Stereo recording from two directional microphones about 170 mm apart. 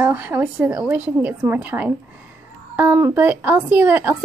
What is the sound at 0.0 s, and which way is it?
Speech, 10° right (ahead or behind).